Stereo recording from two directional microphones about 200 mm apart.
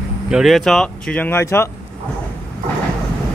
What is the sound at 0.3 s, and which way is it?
Speech, centre (ahead or behind).